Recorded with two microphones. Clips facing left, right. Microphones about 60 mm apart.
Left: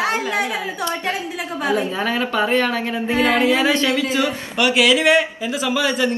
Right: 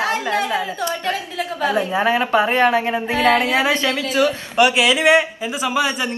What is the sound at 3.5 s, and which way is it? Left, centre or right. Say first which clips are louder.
Speech: left 1 dB; right.